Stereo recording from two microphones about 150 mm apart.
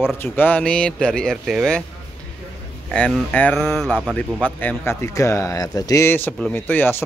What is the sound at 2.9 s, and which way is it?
Speech, 10° left (ahead or behind).